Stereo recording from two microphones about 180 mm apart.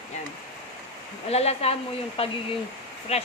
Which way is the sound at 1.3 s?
35° left (ahead or behind).